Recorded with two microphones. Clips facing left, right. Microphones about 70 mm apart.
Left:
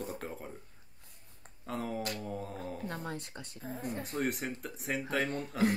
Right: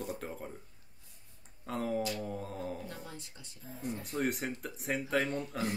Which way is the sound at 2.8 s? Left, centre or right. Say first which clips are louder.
Left 6 dB; left.